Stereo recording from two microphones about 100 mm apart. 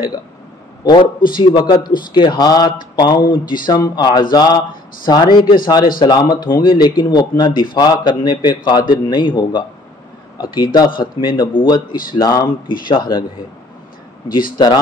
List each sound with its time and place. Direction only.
0.8 s a man's voice: 50° left (ahead or behind)
12.6 s a man's voice: 50° left (ahead or behind)
14.3 s a man's voice: 50° left (ahead or behind)